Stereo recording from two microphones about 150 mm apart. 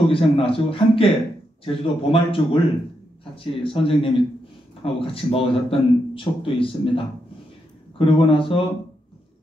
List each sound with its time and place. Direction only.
0.1 s a man's voice: 35° left (ahead or behind)
8.0 s a man's voice: 35° left (ahead or behind)